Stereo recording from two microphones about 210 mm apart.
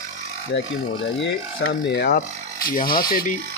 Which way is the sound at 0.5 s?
60° left (ahead or behind).